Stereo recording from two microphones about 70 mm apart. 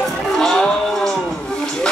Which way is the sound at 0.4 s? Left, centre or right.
Centre.